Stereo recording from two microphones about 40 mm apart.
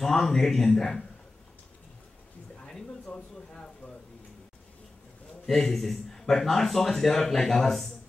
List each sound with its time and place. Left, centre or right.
0.0 s a man's voice: centre
3.1 s a sound: left
5.5 s a man's voice: centre